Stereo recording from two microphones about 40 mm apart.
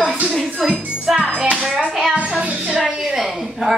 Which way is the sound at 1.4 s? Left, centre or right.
Right.